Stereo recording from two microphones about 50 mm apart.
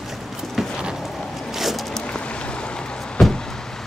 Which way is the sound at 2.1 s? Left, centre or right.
Centre.